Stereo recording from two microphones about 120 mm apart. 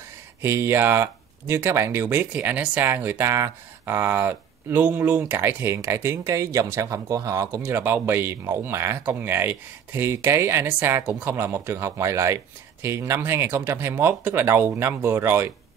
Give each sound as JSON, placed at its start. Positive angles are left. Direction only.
{"t": 0.4, "sound": "speech", "side_deg": -20}
{"t": 7.6, "sound": "speech", "side_deg": -15}